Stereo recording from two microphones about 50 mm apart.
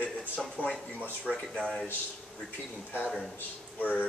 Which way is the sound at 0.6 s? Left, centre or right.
Left.